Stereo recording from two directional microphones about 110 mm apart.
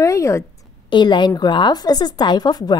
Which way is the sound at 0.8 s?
45° left (ahead or behind).